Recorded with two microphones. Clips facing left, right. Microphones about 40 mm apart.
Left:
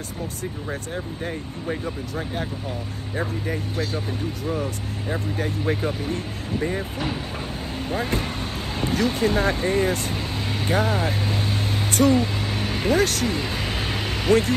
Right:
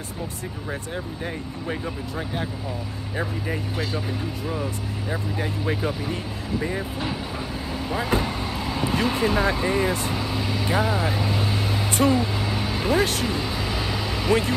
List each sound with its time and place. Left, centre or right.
3.7 s speech: right
5.7 s speech: centre
8.9 s speech: right
10.7 s vehicle: right
12.1 s a sound: left
12.9 s speech: right
13.2 s vehicle: left